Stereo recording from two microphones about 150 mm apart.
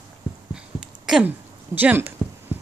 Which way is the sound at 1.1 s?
10° right (ahead or behind).